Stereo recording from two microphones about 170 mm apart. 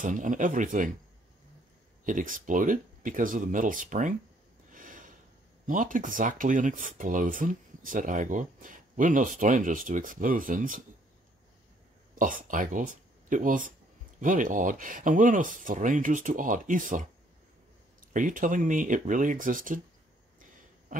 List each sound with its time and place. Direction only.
0.0 s speech: 50° right (ahead or behind)
2.0 s speech: 50° right (ahead or behind)
4.6 s snort: 50° right (ahead or behind)
5.7 s speech: 50° right (ahead or behind)
12.2 s speech: 50° right (ahead or behind)
18.1 s speech: 50° right (ahead or behind)